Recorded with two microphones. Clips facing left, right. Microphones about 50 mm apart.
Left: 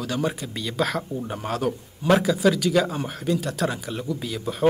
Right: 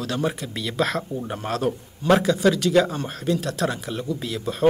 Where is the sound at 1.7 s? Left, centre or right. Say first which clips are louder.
Right 2 dB; centre.